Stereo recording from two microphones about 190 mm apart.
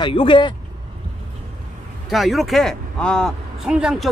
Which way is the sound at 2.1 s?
Centre (ahead or behind).